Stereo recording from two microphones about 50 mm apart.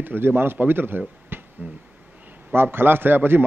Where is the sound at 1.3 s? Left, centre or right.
Right.